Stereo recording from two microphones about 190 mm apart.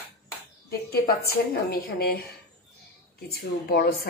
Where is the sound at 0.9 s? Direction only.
55° left (ahead or behind).